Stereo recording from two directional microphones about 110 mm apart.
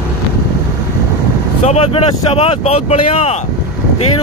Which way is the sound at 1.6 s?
80° left.